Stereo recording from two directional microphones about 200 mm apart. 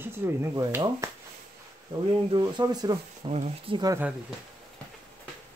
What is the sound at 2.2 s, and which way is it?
Speech, 20° right (ahead or behind).